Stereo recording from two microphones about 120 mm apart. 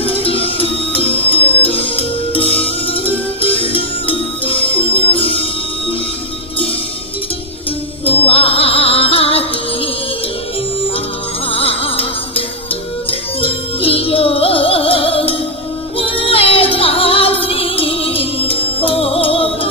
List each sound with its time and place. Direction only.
0.0 s music: 50° left (ahead or behind)
8.0 s music: 50° left (ahead or behind)
11.5 s music: 50° left (ahead or behind)